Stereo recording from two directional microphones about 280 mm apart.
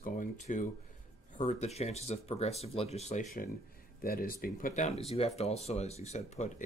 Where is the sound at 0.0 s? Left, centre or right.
Left.